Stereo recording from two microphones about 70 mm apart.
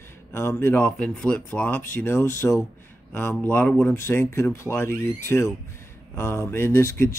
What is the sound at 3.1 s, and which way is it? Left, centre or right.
Speech, left.